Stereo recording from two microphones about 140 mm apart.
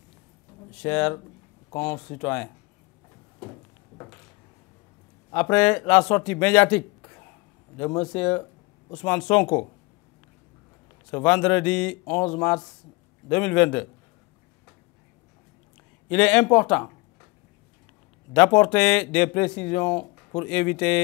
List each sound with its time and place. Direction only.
0.7 s speech: 5° left (ahead or behind)
5.3 s speech: 5° left (ahead or behind)
7.0 s a sound: 15° left (ahead or behind)
8.0 s speech: 5° left (ahead or behind)
11.1 s speech: 10° left (ahead or behind)
16.1 s speech: 5° left (ahead or behind)
18.6 s speech: 5° left (ahead or behind)